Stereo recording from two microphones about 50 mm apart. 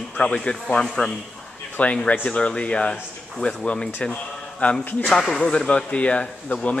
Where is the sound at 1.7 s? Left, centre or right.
Left.